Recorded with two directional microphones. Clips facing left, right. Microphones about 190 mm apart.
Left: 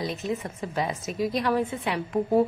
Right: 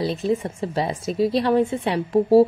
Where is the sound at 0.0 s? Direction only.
30° right (ahead or behind).